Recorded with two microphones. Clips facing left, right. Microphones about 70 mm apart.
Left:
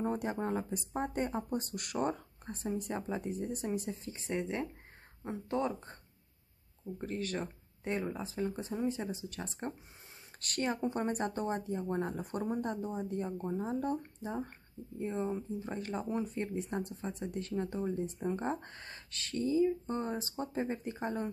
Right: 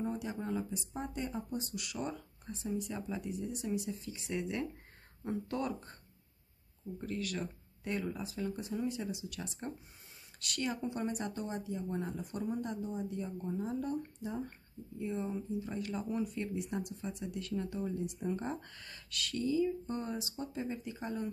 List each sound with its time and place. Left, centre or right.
0.0 s speech: left
7.0 s speech: left